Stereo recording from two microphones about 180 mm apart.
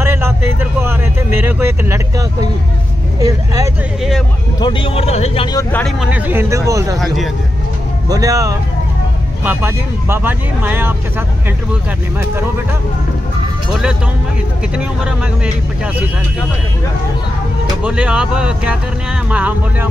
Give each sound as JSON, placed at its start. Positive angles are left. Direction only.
{"t": 0.0, "sound": "a sound", "side_deg": -10}
{"t": 3.2, "sound": "speech", "side_deg": -20}
{"t": 4.6, "sound": "speech", "side_deg": 25}
{"t": 5.6, "sound": "speech", "side_deg": 10}
{"t": 5.9, "sound": "speech", "side_deg": -10}
{"t": 8.1, "sound": "speech", "side_deg": -20}
{"t": 14.8, "sound": "speech", "side_deg": -5}
{"t": 17.8, "sound": "speech", "side_deg": -5}